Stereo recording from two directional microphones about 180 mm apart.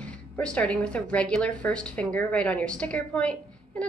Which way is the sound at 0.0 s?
5° left (ahead or behind).